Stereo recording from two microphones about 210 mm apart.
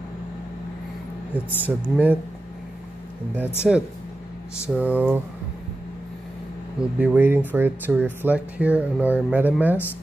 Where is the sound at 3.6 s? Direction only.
Centre (ahead or behind).